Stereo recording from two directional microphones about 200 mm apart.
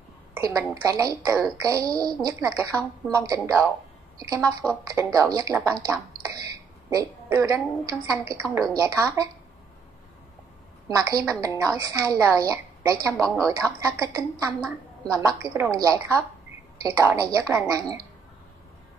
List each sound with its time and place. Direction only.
0.3 s a woman's voice: 15° right (ahead or behind)
5.7 s a sound: 15° right (ahead or behind)
6.9 s a woman's voice: 15° right (ahead or behind)
10.9 s a woman's voice: 15° right (ahead or behind)